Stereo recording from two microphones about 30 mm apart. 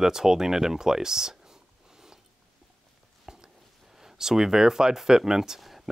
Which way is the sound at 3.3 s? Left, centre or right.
Centre.